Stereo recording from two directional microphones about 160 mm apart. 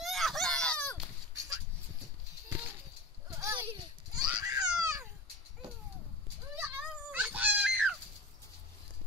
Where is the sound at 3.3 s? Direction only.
20° right (ahead or behind).